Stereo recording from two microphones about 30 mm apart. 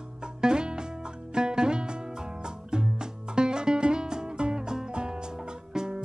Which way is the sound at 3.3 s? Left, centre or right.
Right.